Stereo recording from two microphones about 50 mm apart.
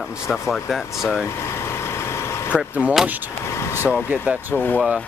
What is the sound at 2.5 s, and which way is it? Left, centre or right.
Speech, centre.